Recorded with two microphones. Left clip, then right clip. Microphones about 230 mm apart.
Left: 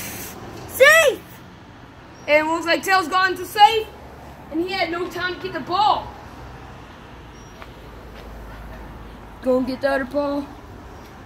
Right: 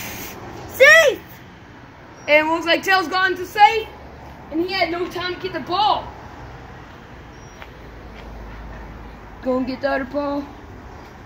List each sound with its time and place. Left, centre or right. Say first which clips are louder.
0.0 s a sound: right 2 dB; centre
2.2 s a woman's voice: right 2 dB; centre
9.4 s female singing: left 2 dB; left